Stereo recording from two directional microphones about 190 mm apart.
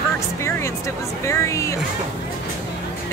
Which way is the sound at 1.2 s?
15° left (ahead or behind).